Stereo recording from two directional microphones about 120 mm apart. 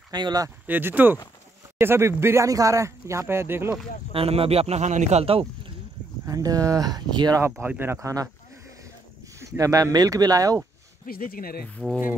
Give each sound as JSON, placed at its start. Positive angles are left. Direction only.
{"t": 0.1, "sound": "speech", "side_deg": -35}
{"t": 0.7, "sound": "speech", "side_deg": -15}
{"t": 4.1, "sound": "speech", "side_deg": -50}
{"t": 5.2, "sound": "speech", "side_deg": -50}
{"t": 6.2, "sound": "speech", "side_deg": -30}
{"t": 7.6, "sound": "speech", "side_deg": -15}
{"t": 11.8, "sound": "speech", "side_deg": -10}